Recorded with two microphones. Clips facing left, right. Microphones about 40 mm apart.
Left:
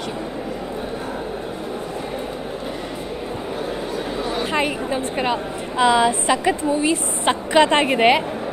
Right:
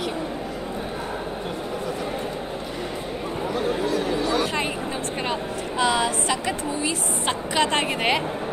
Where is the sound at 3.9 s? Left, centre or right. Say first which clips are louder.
Right 2 dB; right.